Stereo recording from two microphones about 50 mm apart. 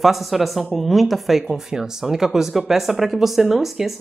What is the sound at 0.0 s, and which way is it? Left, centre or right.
Speech, centre.